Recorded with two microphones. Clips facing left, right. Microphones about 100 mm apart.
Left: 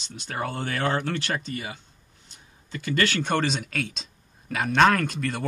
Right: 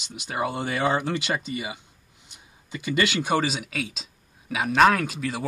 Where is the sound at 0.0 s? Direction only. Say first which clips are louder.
Right 3 dB; 10° right (ahead or behind).